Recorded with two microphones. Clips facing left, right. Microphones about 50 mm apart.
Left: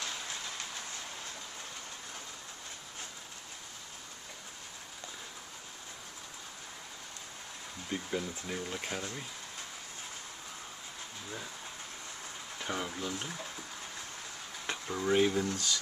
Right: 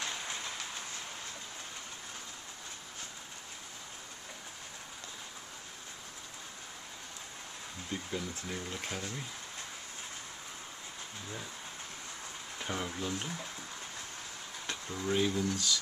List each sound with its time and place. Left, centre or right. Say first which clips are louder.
7.9 s speech: left 3 dB; centre
12.5 s speech: even; centre
14.7 s speech: left 4 dB; centre